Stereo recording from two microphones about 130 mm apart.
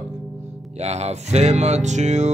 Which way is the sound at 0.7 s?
55° right (ahead or behind).